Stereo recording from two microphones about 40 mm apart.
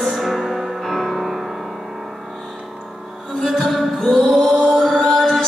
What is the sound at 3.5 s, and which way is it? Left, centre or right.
Music, centre.